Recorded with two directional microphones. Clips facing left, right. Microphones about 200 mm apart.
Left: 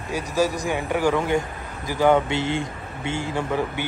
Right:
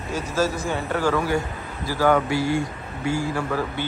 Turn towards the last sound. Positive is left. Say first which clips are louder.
# left 1 dB
turn(degrees=20)  # may be behind; listen again after turning